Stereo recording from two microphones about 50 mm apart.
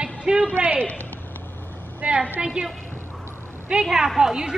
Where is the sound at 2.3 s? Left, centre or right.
Centre.